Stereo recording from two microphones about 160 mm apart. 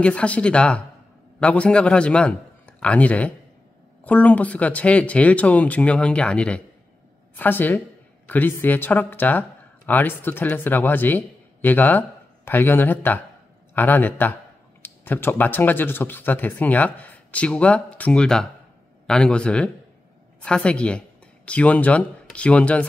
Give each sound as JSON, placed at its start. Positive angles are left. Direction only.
{"t": 0.0, "sound": "a man's voice", "side_deg": 5}